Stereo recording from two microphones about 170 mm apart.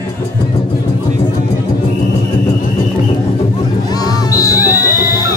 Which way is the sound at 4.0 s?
20° left (ahead or behind).